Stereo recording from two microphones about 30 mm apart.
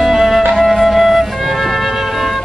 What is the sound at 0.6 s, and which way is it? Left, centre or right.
Flute, centre.